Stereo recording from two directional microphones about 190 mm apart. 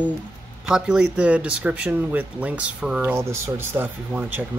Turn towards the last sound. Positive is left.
turn(degrees=-10)  # may be behind; listen again after turning